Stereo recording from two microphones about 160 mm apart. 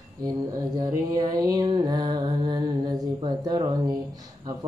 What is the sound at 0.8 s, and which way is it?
Mantra, 25° right (ahead or behind).